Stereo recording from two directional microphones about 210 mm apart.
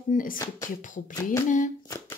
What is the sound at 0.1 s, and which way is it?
Speech, 40° left (ahead or behind).